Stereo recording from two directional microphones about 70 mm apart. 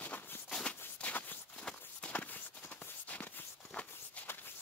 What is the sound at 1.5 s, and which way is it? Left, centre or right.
Walk, centre.